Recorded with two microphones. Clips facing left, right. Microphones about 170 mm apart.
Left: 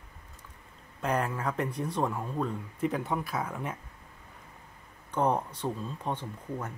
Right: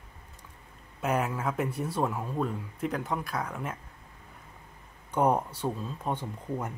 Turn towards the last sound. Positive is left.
turn(degrees=-10)  # may be behind; listen again after turning